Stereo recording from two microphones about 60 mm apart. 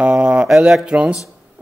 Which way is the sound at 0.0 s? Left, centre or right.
Centre.